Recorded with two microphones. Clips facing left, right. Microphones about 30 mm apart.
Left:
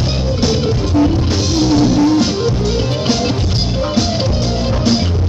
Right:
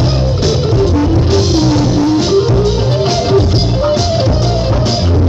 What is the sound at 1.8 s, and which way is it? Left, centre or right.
Music, right.